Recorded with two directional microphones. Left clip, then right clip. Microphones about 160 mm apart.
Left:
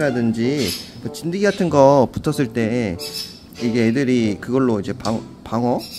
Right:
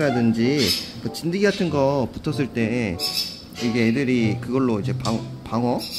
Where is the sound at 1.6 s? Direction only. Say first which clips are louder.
Left 8 dB; 45° left (ahead or behind).